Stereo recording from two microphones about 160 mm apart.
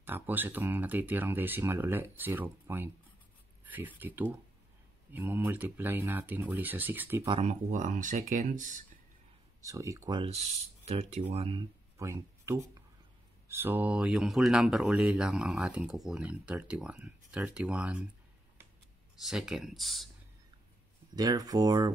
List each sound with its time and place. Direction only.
0.0 s speech: 10° right (ahead or behind)
7.2 s speech: 35° right (ahead or behind)
7.7 s speech: 55° right (ahead or behind)
9.6 s speech: 20° right (ahead or behind)
10.9 s speech: 40° right (ahead or behind)
12.0 s speech: 20° right (ahead or behind)
19.2 s speech: 5° right (ahead or behind)
21.1 s speech: 25° right (ahead or behind)